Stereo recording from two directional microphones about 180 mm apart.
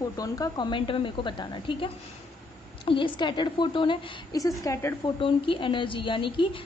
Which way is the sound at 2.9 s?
25° left (ahead or behind).